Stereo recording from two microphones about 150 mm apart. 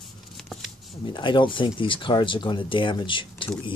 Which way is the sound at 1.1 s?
30° left (ahead or behind).